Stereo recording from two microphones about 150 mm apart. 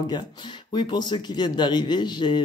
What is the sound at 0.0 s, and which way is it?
Speech, 30° left (ahead or behind).